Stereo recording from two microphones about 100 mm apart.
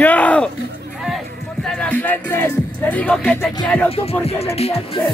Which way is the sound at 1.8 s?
15° left (ahead or behind).